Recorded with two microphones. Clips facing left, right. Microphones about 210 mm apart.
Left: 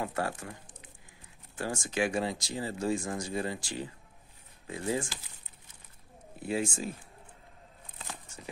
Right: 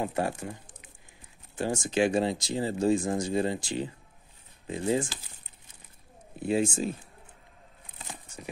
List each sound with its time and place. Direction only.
0.0 s speech: 20° right (ahead or behind)
1.6 s speech: 20° right (ahead or behind)
6.4 s speech: 20° right (ahead or behind)